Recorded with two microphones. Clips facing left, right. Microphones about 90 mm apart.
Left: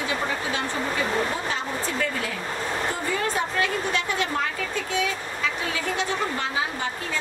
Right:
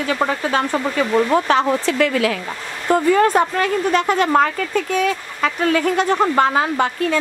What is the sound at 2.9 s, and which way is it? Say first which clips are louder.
A woman's voice: right 12 dB; 50° right (ahead or behind).